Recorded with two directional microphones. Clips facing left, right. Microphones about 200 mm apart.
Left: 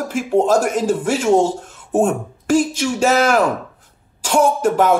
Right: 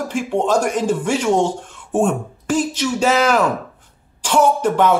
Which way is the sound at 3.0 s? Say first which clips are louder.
Left 1 dB; 45° left (ahead or behind).